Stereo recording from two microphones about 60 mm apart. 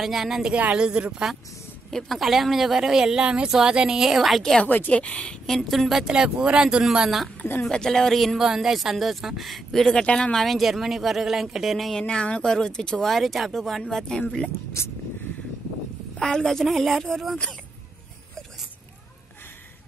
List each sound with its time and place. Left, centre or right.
0.0 s speech: centre
0.6 s speech: centre
1.9 s speech: centre
4.6 s a woman's voice: left
5.6 s speech: centre
7.6 s speech: centre
8.4 s speech: centre
10.4 s speech: centre
11.9 s speech: centre
13.0 s speech: centre
14.8 s speech: left
16.2 s speech: centre